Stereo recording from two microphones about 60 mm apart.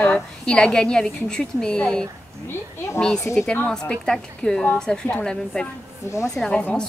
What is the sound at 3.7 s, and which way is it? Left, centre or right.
A woman's voice, centre.